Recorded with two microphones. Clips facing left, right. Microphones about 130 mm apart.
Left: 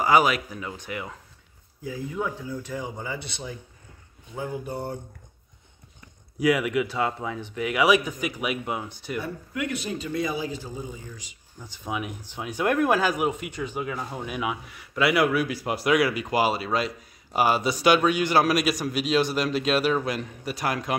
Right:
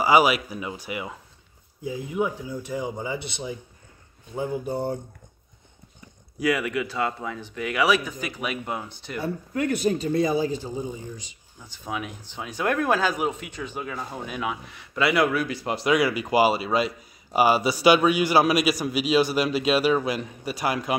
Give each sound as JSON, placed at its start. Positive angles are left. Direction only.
{"t": 0.0, "sound": "speech", "side_deg": -5}
{"t": 6.4, "sound": "speech", "side_deg": 15}
{"t": 9.2, "sound": "a man's voice", "side_deg": -40}
{"t": 11.9, "sound": "speech", "side_deg": 15}